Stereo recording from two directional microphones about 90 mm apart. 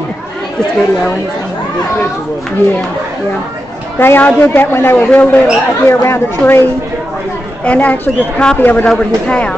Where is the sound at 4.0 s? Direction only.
25° left (ahead or behind).